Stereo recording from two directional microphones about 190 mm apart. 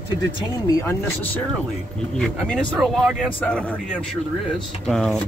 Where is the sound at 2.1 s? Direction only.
5° left (ahead or behind).